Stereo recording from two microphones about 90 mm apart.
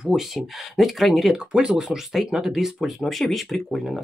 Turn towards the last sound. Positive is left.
turn(degrees=0)  # may be behind; listen again after turning